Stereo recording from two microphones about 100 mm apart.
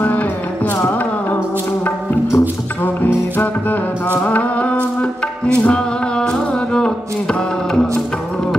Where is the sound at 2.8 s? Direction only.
20° left (ahead or behind).